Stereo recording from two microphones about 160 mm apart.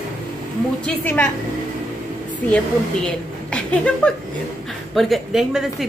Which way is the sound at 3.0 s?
5° left (ahead or behind).